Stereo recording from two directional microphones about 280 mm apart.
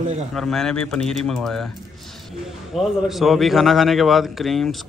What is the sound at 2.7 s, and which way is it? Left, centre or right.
A man's voice, centre.